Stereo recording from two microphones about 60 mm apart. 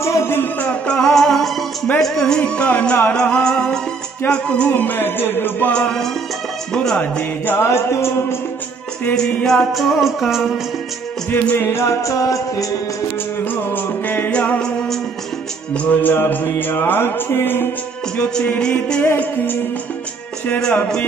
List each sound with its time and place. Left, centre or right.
0.0 s music: left
0.7 s music: centre
1.1 s music: centre
4.6 s music: left
5.7 s music: centre
7.0 s music: left
7.5 s music: left
9.7 s music: centre
11.2 s music: left
11.6 s music: left
13.4 s music: left
15.7 s music: left
18.1 s music: centre
19.1 s music: left